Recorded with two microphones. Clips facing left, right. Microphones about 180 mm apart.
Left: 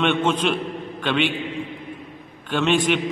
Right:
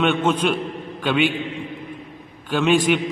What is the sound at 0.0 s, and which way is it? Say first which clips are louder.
A man's voice: right 1 dB; 5° right (ahead or behind).